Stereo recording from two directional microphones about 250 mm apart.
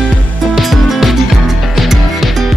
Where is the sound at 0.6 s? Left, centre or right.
Centre.